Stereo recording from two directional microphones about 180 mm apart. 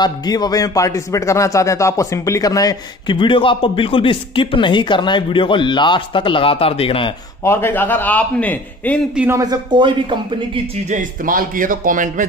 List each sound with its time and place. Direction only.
0.0 s speech: 20° left (ahead or behind)
7.4 s a man's voice: 15° left (ahead or behind)
9.1 s speech: 10° right (ahead or behind)
9.4 s speech: 25° right (ahead or behind)
10.9 s a man's voice: 50° right (ahead or behind)